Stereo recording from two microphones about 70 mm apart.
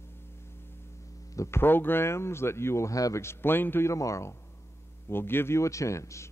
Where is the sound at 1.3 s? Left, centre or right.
Left.